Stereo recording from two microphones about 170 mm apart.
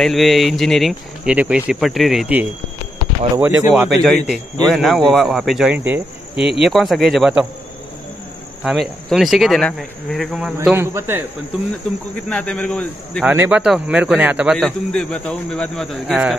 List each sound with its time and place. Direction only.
0.0 s speech: centre (ahead or behind)
8.6 s speech: centre (ahead or behind)
10.8 s speech: 15° right (ahead or behind)
12.3 s speech: 5° left (ahead or behind)
13.2 s speech: 10° right (ahead or behind)
14.6 s speech: 5° left (ahead or behind)